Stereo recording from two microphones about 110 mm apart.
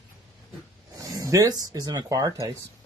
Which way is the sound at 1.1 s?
30° right (ahead or behind).